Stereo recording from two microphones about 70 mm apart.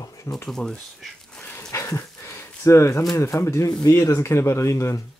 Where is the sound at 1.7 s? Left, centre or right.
Left.